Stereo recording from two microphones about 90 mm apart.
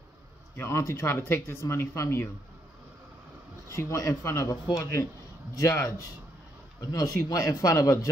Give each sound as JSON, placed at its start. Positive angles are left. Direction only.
{"t": 0.6, "sound": "speech", "side_deg": 30}
{"t": 3.6, "sound": "a man's voice", "side_deg": 35}